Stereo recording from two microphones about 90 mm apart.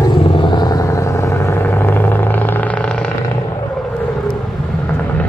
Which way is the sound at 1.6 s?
20° left (ahead or behind).